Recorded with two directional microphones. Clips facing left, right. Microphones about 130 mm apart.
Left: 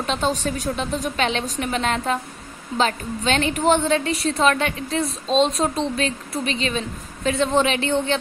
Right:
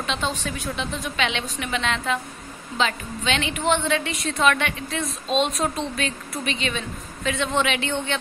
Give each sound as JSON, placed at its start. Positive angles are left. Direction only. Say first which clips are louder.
{"t": 0.0, "sound": "a woman's voice", "louder": "left 5 dB", "side_deg": 40}